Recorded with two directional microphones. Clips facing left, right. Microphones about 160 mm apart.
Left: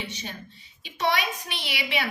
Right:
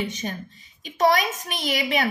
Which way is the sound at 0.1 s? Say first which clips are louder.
Right 6 dB; 50° right (ahead or behind).